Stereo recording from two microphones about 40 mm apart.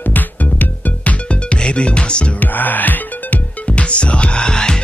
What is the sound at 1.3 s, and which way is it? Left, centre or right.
Music, left.